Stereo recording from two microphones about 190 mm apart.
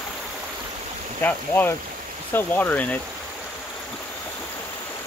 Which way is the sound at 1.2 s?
10° left (ahead or behind).